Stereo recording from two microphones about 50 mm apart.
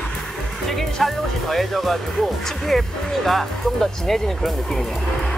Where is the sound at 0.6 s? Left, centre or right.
Centre.